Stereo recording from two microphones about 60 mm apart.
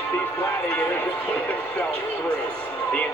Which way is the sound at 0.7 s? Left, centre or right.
Left.